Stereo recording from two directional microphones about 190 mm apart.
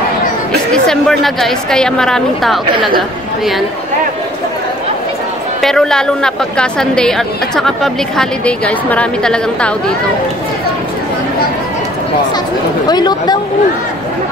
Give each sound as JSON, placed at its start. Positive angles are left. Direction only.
{"t": 0.5, "sound": "music", "side_deg": 5}
{"t": 1.2, "sound": "a woman's voice", "side_deg": 0}
{"t": 5.6, "sound": "a woman's voice", "side_deg": 5}
{"t": 12.8, "sound": "speech", "side_deg": 20}